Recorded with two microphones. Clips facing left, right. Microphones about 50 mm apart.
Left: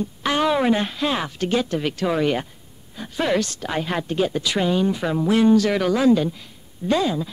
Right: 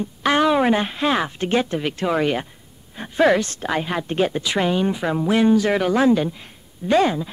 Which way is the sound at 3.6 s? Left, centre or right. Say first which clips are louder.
Right 1 dB; centre.